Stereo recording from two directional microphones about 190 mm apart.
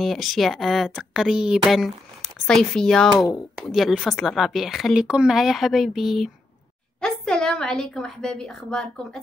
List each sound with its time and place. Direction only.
0.0 s a woman's voice: centre (ahead or behind)